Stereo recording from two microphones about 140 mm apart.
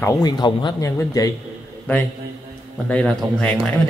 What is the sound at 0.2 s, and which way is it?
A man's voice, 30° left (ahead or behind).